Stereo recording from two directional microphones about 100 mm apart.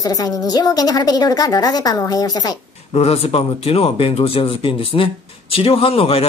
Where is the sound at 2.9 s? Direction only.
85° left.